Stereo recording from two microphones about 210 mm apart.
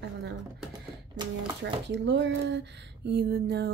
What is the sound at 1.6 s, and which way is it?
Speech, 55° right (ahead or behind).